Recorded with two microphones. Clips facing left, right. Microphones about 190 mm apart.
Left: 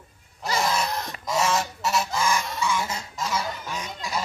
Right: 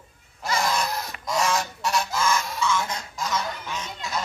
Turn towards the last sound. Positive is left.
turn(degrees=10)  # may be behind; listen again after turning